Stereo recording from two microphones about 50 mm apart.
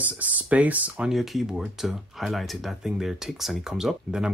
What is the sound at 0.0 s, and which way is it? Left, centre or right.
Speech, right.